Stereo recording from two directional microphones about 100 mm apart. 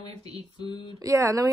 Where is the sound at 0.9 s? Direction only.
35° right (ahead or behind).